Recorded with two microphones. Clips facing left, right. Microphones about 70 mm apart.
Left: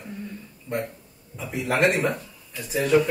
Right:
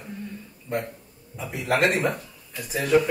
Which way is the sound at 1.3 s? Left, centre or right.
Centre.